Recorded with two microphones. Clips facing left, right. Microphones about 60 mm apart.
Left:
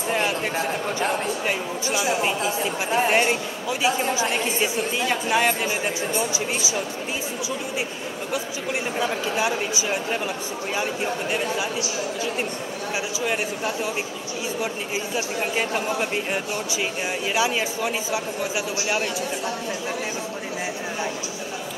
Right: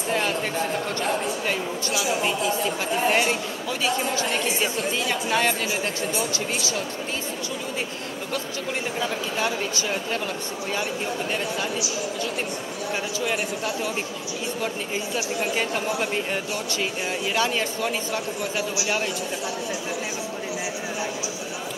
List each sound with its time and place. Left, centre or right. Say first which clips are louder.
0.1 s speech: left 1 dB; centre
9.0 s speech: left 3 dB; centre
15.5 s speech: left 3 dB; centre